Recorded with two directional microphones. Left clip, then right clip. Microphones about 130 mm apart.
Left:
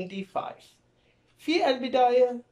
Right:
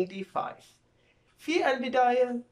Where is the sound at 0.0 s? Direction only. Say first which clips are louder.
Right 1 dB; 25° left (ahead or behind).